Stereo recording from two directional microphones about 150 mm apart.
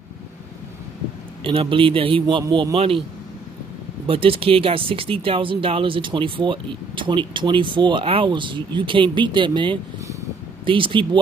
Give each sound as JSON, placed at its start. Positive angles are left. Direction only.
{"t": 1.4, "sound": "speech", "side_deg": -40}
{"t": 4.1, "sound": "speech", "side_deg": -40}